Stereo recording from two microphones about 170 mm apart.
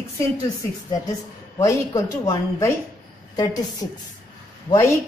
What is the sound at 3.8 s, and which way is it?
Speech, 25° left (ahead or behind).